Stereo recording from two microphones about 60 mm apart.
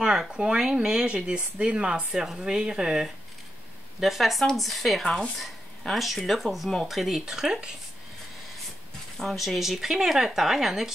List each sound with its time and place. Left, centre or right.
0.0 s speech: centre
9.2 s speech: centre